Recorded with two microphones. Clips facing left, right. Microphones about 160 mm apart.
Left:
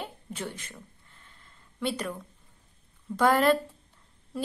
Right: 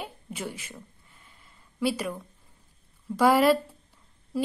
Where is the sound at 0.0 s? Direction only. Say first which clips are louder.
Right 1 dB; 10° right (ahead or behind).